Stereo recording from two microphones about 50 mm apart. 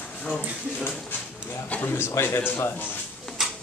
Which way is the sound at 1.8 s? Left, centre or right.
Left.